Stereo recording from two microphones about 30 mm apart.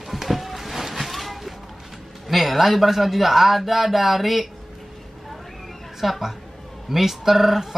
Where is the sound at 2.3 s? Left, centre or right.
Centre.